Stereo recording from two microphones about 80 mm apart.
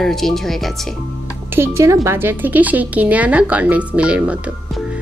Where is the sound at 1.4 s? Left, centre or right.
Right.